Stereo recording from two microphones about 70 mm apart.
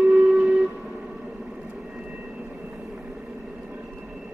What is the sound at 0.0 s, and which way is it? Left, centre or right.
Train, centre.